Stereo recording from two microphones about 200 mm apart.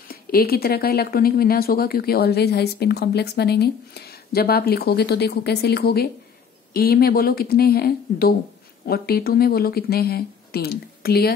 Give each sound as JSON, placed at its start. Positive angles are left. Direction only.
{"t": 0.1, "sound": "speech", "side_deg": 50}